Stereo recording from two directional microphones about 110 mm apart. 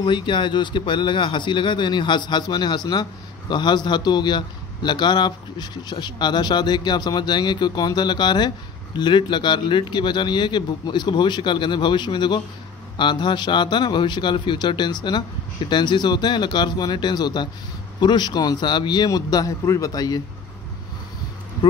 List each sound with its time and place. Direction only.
0.0 s a man's voice: 45° left (ahead or behind)